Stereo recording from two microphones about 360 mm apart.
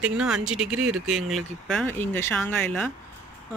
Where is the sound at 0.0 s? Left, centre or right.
Centre.